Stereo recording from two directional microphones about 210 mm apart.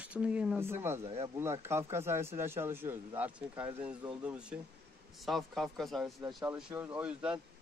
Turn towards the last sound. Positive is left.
turn(degrees=-5)  # may be behind; listen again after turning